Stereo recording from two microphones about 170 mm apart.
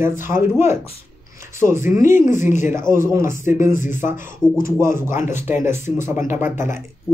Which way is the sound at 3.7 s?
50° left (ahead or behind).